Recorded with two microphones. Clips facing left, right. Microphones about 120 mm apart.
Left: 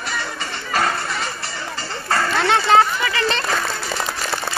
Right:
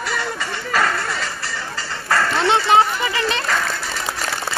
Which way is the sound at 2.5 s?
20° right (ahead or behind).